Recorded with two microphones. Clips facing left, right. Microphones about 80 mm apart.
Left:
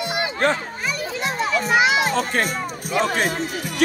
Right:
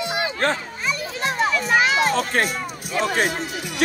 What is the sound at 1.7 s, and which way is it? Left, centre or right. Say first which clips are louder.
Speech: left 1 dB; right.